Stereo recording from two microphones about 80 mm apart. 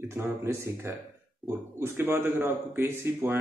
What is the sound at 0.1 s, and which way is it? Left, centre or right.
Speech, right.